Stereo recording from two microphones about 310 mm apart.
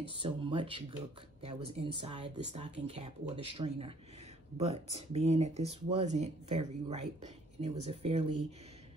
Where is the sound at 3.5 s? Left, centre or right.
Centre.